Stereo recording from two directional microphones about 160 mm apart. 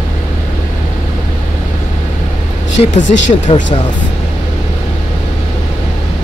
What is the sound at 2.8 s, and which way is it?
Speech, 40° left (ahead or behind).